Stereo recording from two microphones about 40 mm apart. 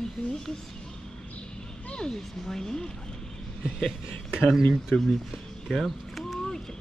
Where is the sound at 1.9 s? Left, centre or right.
Centre.